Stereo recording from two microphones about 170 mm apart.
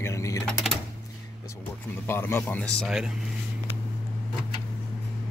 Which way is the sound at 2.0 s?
15° left (ahead or behind).